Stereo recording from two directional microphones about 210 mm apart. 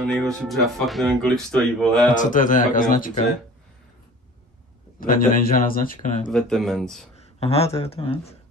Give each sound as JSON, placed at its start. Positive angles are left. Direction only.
{"t": 0.0, "sound": "speech", "side_deg": 0}
{"t": 2.0, "sound": "speech", "side_deg": 35}
{"t": 5.0, "sound": "speech", "side_deg": 40}
{"t": 6.3, "sound": "speech", "side_deg": 0}
{"t": 7.3, "sound": "speech", "side_deg": 30}